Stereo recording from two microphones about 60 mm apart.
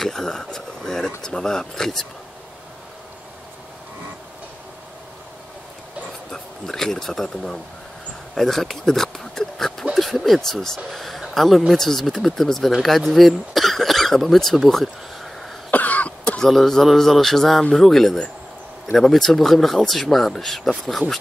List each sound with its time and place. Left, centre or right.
0.0 s a sound: centre
1.2 s speech: centre
6.3 s speech: centre
15.7 s cough: left
16.3 s speech: centre